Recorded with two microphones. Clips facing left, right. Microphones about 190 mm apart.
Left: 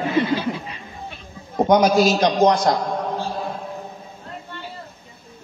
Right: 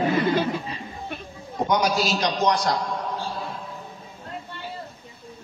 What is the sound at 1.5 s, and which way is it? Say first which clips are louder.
A man's voice: left 7 dB; 50° left (ahead or behind).